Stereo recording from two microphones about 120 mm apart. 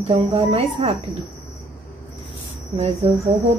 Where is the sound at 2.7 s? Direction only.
55° right (ahead or behind).